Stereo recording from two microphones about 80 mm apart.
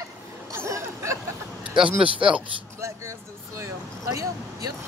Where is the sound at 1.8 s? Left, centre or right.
Right.